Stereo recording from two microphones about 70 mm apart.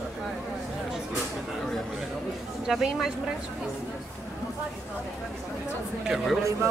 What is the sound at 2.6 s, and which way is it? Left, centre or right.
Speech, centre.